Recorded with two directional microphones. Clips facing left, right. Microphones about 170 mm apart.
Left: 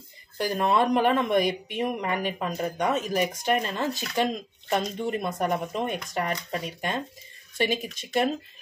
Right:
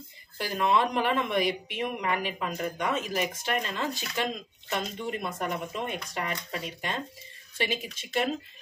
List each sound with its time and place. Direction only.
0.4 s speech: 40° left (ahead or behind)